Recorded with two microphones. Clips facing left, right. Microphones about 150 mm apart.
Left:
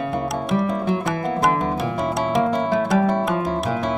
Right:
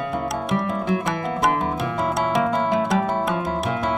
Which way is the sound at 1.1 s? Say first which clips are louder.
Left 2 dB; 30° left (ahead or behind).